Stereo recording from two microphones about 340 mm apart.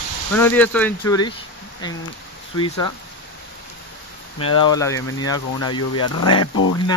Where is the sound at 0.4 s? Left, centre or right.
Centre.